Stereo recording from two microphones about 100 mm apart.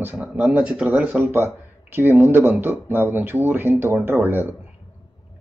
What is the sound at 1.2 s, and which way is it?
A man's voice, 25° right (ahead or behind).